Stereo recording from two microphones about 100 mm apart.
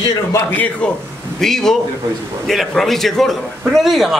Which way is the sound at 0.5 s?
15° left (ahead or behind).